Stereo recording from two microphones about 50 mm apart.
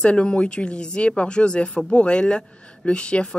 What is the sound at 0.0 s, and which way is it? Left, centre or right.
Speech, centre.